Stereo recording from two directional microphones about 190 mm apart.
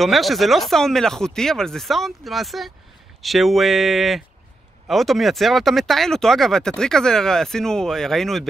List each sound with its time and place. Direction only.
0.0 s speech: centre (ahead or behind)